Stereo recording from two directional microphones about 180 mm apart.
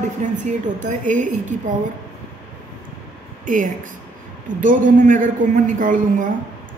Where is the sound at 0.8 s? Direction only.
45° right (ahead or behind).